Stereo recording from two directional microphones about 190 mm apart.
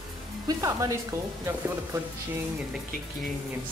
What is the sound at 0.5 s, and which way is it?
Speech, 15° right (ahead or behind).